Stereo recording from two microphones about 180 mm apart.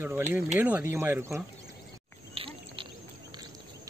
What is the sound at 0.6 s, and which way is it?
Speech, 10° right (ahead or behind).